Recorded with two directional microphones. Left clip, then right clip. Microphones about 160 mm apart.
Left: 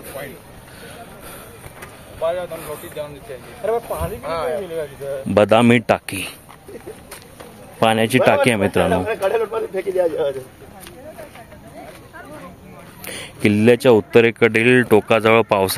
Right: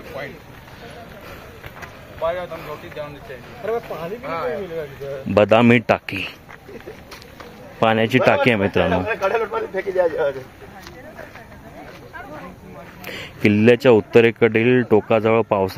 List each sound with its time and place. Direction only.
1.8 s vehicle: 65° left (ahead or behind)
2.5 s speech: 15° left (ahead or behind)
3.6 s speech: 50° left (ahead or behind)
5.3 s speech: 15° left (ahead or behind)
7.8 s speech: 15° left (ahead or behind)
8.9 s speech: 75° left (ahead or behind); by 10.4 s 90° left
13.0 s speech: 5° left (ahead or behind)